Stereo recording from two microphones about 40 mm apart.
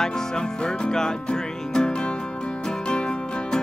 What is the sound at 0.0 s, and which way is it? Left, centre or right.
Music, left.